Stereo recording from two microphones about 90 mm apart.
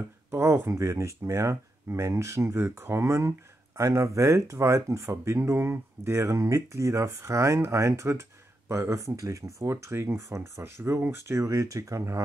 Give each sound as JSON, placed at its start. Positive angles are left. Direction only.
{"t": 0.3, "sound": "speech", "side_deg": -30}